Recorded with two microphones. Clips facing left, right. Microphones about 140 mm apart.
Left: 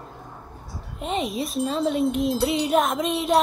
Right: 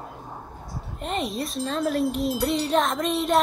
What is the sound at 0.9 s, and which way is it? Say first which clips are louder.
Speech: left 2 dB; centre (ahead or behind).